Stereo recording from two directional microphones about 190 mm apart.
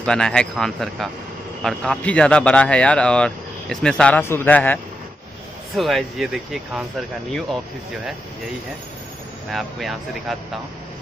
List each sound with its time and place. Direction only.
0.0 s a man's voice: 5° left (ahead or behind)
5.8 s speech: centre (ahead or behind)
9.5 s speech: centre (ahead or behind)